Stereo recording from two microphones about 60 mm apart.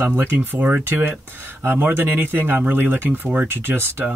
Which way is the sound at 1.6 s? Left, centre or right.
Right.